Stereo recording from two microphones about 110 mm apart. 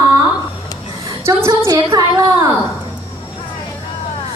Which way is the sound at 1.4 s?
30° right (ahead or behind).